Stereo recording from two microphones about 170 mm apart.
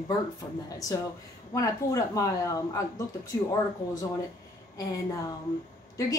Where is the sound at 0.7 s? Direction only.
20° left (ahead or behind).